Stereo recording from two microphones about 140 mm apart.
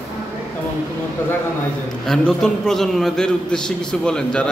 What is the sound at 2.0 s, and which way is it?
A man's voice, 5° left (ahead or behind).